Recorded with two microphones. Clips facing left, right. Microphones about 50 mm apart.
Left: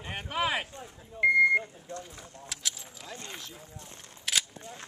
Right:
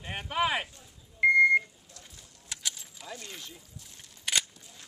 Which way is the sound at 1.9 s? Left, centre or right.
Left.